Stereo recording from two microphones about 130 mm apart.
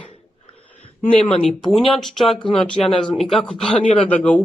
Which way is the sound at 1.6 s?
45° left (ahead or behind).